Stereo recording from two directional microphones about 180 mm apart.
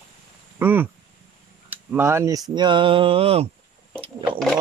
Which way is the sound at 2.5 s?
25° right (ahead or behind).